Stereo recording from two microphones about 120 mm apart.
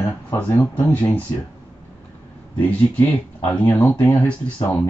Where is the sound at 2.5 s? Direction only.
15° left (ahead or behind).